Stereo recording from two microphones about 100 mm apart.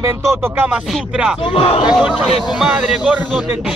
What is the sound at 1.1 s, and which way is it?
Speech, 10° right (ahead or behind).